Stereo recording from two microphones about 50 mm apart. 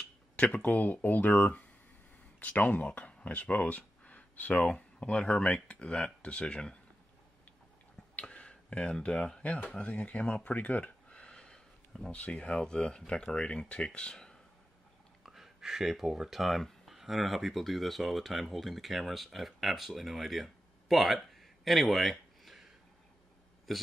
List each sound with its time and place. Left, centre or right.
0.4 s speech: left
8.2 s speech: left
9.4 s speech: left
9.8 s a sound: left
12.1 s speech: left
15.2 s speech: centre
23.7 s a man's voice: centre